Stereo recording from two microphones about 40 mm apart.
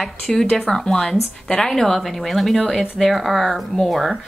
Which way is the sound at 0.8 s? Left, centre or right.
Centre.